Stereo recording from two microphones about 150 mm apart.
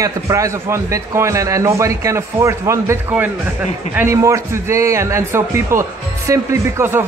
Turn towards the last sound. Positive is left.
turn(degrees=-15)  # may be behind; listen again after turning